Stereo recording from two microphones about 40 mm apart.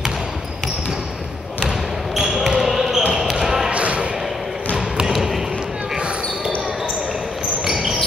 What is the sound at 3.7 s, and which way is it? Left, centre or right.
Basketball bounce, right.